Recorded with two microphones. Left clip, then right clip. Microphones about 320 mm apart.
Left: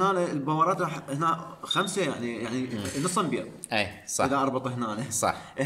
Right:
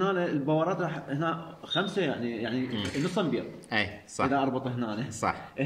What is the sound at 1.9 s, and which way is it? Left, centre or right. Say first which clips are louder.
Speech: left 1 dB; centre.